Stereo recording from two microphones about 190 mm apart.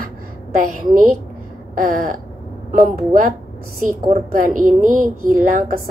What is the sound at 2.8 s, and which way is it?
A woman's voice, 45° right (ahead or behind).